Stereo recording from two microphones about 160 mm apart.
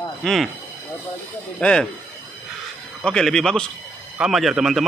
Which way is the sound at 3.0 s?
5° left (ahead or behind).